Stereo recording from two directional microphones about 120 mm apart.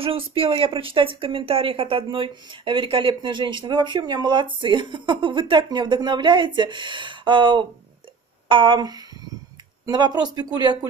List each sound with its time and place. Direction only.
0.0 s a woman's voice: 50° right (ahead or behind); by 10.9 s 35° right (ahead or behind)